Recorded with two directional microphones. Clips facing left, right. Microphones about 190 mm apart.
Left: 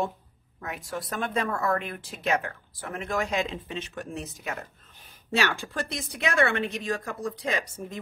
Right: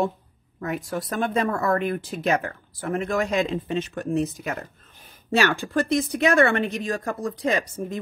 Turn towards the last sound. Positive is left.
turn(degrees=-45)  # may be behind; listen again after turning